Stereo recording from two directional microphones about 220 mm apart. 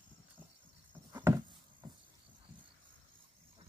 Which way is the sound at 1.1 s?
15° right (ahead or behind).